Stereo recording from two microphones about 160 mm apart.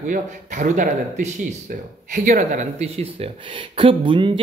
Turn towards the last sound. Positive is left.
turn(degrees=-30)  # may be behind; listen again after turning